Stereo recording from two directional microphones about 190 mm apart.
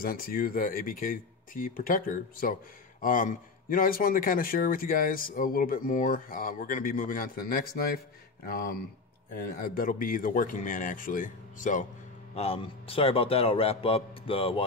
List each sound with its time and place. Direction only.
0.0 s speech: 50° left (ahead or behind)
12.4 s a man's voice: 30° left (ahead or behind)